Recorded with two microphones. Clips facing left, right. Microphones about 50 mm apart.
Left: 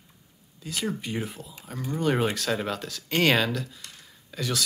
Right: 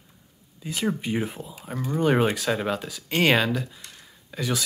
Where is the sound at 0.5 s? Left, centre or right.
Centre.